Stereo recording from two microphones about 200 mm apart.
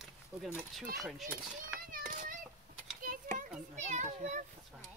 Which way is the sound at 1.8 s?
45° right (ahead or behind).